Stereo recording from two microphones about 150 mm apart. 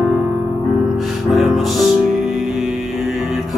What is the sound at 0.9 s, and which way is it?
Music, centre (ahead or behind).